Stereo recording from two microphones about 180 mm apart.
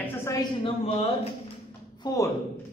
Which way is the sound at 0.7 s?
30° left (ahead or behind).